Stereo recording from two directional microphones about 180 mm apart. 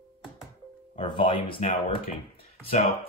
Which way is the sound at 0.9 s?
30° left (ahead or behind).